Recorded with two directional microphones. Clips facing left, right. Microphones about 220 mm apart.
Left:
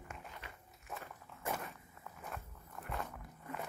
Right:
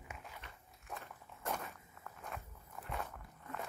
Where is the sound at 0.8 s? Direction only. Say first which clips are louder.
Left 1 dB; centre (ahead or behind).